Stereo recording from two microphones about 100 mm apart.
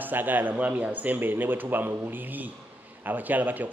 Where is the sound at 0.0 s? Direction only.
20° right (ahead or behind).